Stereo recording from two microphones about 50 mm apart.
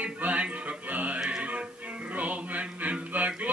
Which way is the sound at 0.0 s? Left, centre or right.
Right.